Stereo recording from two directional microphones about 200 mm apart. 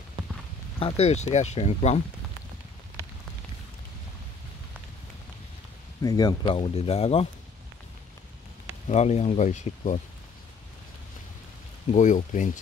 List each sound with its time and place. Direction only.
0.7 s speech: 30° left (ahead or behind)
6.0 s speech: 20° left (ahead or behind)
8.8 s speech: 35° left (ahead or behind)
11.9 s speech: 40° left (ahead or behind)